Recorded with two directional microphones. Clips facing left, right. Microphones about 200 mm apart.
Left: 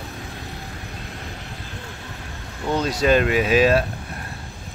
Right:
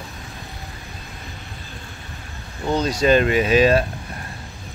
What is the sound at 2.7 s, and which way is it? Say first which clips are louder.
Speech: right 1 dB; 5° left (ahead or behind).